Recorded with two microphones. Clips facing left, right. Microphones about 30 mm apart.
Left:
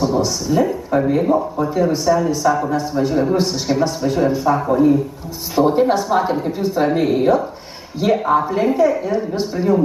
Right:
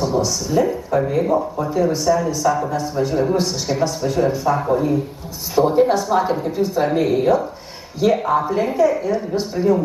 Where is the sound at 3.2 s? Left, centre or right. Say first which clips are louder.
Left 1 dB; centre.